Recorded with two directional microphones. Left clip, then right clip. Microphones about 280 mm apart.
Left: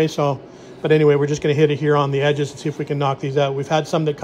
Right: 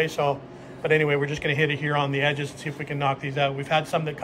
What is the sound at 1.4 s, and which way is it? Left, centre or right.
A man's voice, left.